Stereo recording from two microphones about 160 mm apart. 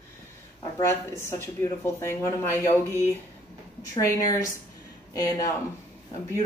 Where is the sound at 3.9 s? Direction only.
20° left (ahead or behind).